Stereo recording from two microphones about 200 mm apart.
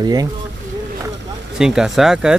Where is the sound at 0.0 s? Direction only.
20° right (ahead or behind).